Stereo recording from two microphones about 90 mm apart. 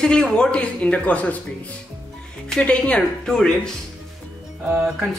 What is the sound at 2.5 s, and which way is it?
Speech, 10° left (ahead or behind).